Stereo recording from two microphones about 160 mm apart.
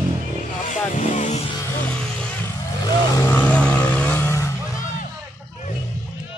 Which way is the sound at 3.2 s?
10° left (ahead or behind).